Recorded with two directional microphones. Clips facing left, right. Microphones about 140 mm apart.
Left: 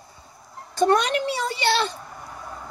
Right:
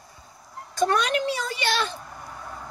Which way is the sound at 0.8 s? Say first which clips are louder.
Left 3 dB; 30° left (ahead or behind).